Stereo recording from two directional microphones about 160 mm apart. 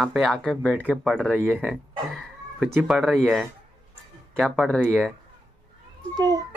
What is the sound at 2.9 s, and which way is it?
Speech, centre (ahead or behind).